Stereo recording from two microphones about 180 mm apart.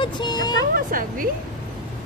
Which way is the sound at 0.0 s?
25° left (ahead or behind).